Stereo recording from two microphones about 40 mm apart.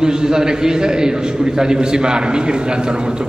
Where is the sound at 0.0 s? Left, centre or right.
Centre.